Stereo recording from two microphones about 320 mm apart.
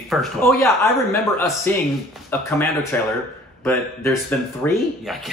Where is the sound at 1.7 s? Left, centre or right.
Centre.